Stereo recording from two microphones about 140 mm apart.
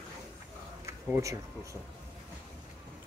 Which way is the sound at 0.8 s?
20° right (ahead or behind).